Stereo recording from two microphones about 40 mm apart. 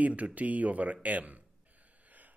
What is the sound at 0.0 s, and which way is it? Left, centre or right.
A man's voice, right.